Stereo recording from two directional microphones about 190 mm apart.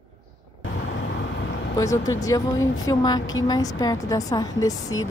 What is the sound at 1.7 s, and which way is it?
A woman's voice, 20° left (ahead or behind).